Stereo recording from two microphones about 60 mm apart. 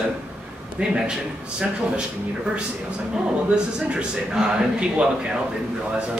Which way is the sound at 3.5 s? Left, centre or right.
Centre.